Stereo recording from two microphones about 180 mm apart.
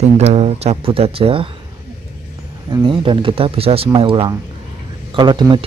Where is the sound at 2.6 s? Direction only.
25° right (ahead or behind).